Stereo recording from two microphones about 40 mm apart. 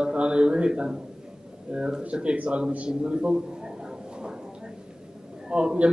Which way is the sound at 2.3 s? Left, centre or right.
Right.